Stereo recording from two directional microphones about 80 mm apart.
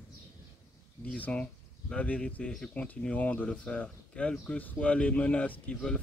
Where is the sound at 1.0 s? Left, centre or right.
Centre.